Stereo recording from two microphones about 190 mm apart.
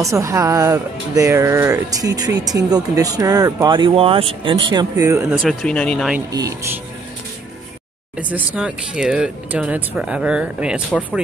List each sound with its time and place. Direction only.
0.0 s speech: 15° right (ahead or behind)
5.4 s speech: centre (ahead or behind)
8.2 s speech: 5° right (ahead or behind)
10.9 s speech: 10° left (ahead or behind)